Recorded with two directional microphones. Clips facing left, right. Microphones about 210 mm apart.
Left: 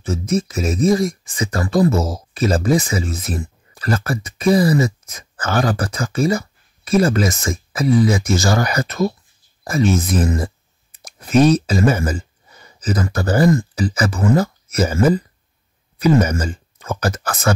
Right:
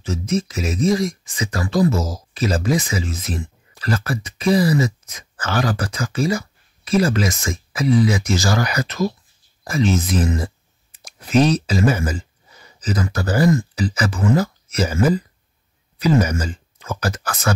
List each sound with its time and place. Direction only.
0.0 s speech: 50° left (ahead or behind)